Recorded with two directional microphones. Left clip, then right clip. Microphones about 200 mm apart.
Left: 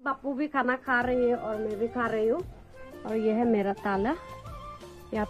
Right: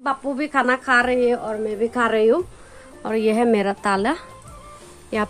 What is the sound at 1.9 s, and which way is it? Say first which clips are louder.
Speech: right 11 dB; 20° right (ahead or behind).